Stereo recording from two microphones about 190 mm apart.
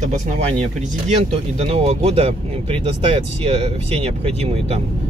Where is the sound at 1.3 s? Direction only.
30° right (ahead or behind).